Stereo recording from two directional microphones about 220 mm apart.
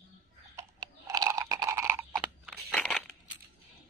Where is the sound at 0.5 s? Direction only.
15° right (ahead or behind).